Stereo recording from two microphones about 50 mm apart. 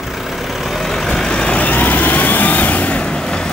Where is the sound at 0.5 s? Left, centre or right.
Centre.